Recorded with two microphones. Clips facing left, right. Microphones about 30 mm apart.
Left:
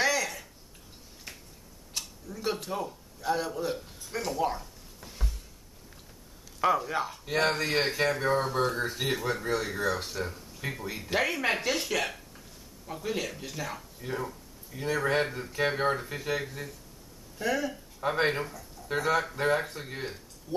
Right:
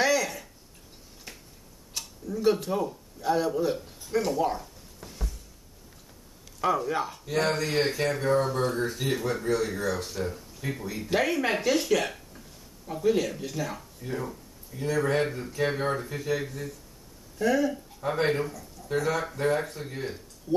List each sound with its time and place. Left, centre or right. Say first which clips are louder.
0.0 s a sound: right 3 dB; centre
6.6 s speech: even; centre
14.7 s speech: right 1 dB; centre
15.2 s speech: right 3 dB; centre
15.5 s speech: left 2 dB; centre
18.0 s speech: right 1 dB; centre